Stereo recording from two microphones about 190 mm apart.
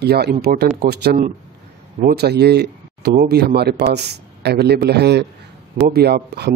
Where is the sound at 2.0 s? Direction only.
55° right (ahead or behind).